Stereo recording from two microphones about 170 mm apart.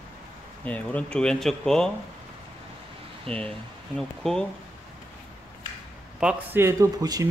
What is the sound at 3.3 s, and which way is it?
Speech, 5° left (ahead or behind).